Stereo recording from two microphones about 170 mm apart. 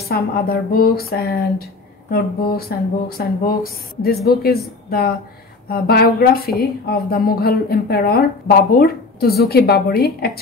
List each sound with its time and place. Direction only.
0.0 s a woman's voice: 65° left (ahead or behind)